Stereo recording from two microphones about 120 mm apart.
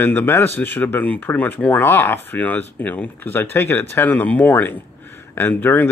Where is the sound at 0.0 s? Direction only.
15° left (ahead or behind).